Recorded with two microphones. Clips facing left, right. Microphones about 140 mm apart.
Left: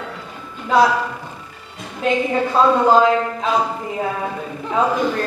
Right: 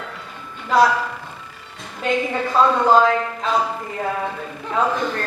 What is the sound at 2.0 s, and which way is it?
A woman's voice, centre (ahead or behind).